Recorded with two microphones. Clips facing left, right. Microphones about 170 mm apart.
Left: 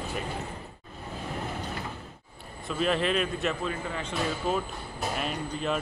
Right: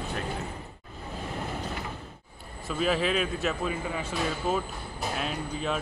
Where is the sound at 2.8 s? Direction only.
Centre (ahead or behind).